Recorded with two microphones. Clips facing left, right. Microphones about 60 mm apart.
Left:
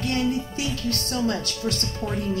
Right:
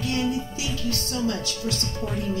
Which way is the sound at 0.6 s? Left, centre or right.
Left.